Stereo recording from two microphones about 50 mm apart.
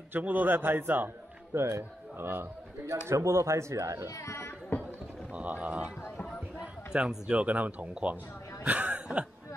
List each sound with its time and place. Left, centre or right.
0.1 s a man's voice: right
1.5 s speech: right
3.1 s speech: right
4.2 s speech: left
5.3 s speech: right
6.6 s a sound: centre
7.2 s speech: right
8.6 s a sound: right